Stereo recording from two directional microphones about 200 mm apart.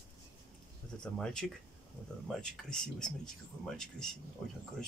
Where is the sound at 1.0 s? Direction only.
5° left (ahead or behind).